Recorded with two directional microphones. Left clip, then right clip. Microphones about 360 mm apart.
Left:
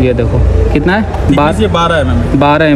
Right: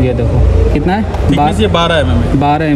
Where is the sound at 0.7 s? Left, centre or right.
Centre.